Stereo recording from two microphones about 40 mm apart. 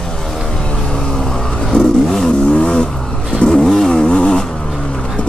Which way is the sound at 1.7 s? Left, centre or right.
Left.